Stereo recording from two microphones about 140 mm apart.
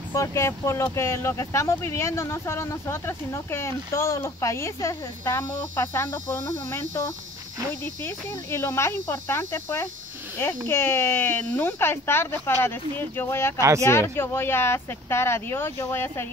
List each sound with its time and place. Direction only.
0.1 s speech: 20° left (ahead or behind)
13.6 s speech: 20° right (ahead or behind)
13.8 s speech: 20° left (ahead or behind)